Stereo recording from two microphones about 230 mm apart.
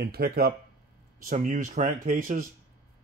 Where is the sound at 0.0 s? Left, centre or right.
Right.